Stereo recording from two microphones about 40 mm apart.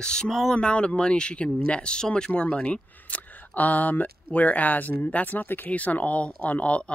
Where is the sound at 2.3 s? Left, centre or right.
Left.